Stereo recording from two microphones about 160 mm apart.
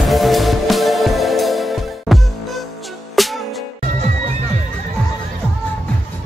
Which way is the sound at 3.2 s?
Centre (ahead or behind).